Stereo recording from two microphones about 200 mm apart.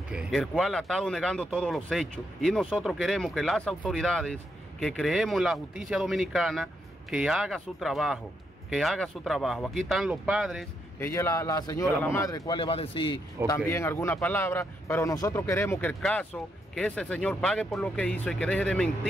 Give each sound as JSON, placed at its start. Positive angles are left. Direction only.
{"t": 0.1, "sound": "speech", "side_deg": 0}
{"t": 11.0, "sound": "a man's voice", "side_deg": 15}
{"t": 13.7, "sound": "a man's voice", "side_deg": 10}